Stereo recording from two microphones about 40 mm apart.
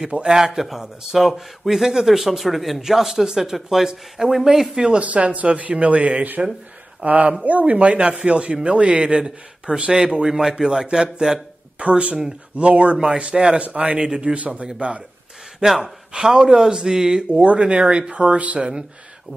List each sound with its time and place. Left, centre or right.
0.3 s a man's voice: centre
4.9 s a man's voice: right; by 11.3 s centre
11.8 s speech: right
12.9 s speech: centre
13.6 s speech: right
13.9 s a man's voice: centre
14.3 s speech: right
15.6 s a man's voice: centre
17.3 s speech: right